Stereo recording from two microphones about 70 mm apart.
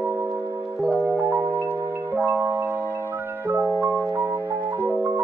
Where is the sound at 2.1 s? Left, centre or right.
Right.